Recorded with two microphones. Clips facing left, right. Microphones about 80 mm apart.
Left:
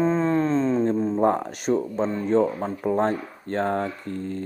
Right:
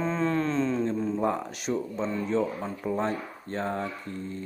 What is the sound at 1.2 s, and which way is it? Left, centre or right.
A man's voice, left.